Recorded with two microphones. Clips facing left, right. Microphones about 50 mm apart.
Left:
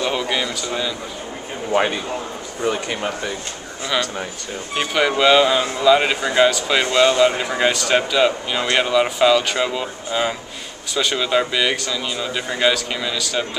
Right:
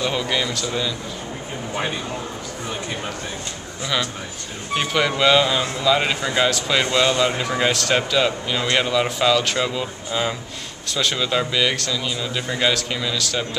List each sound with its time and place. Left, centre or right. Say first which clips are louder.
0.0 s speech: left 1 dB; centre
2.6 s speech: left 8 dB; left
4.7 s speech: left 2 dB; centre